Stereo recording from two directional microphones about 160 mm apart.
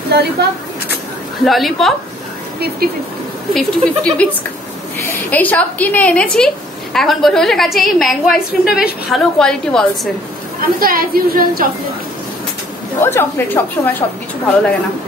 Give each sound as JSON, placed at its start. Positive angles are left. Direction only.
{"t": 0.1, "sound": "speech", "side_deg": -90}
{"t": 1.4, "sound": "a woman's voice", "side_deg": 0}
{"t": 3.5, "sound": "a woman's voice", "side_deg": 5}
{"t": 10.6, "sound": "a woman's voice", "side_deg": -65}
{"t": 13.0, "sound": "a woman's voice", "side_deg": 15}